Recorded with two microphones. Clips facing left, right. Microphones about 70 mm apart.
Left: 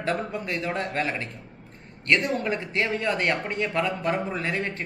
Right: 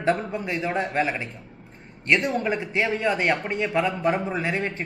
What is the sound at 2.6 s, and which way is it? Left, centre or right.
Speech, centre.